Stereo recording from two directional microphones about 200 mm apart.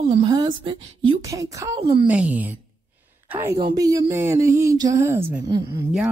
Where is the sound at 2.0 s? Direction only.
5° right (ahead or behind).